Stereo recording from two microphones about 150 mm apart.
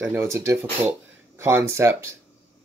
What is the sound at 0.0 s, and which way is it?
Speech, 15° right (ahead or behind).